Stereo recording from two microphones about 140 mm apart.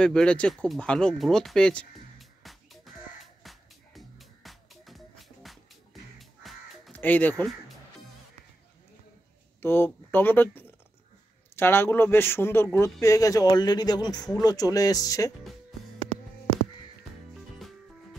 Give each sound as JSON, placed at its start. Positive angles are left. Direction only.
{"t": 0.0, "sound": "speech", "side_deg": 5}
{"t": 3.4, "sound": "music", "side_deg": 0}
{"t": 6.9, "sound": "speech", "side_deg": 10}
{"t": 9.6, "sound": "a man's voice", "side_deg": 15}